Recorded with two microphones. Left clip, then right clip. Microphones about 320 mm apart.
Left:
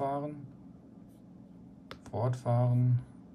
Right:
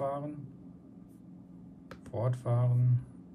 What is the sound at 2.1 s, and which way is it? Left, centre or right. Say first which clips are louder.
Speech: left 2 dB; centre.